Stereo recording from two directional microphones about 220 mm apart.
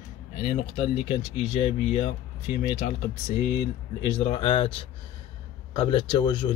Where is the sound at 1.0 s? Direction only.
30° left (ahead or behind).